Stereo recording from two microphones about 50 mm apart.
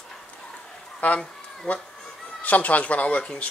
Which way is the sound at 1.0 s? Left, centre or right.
Left.